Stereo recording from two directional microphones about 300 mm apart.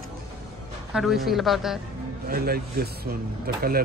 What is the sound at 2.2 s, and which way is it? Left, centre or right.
Speech, right.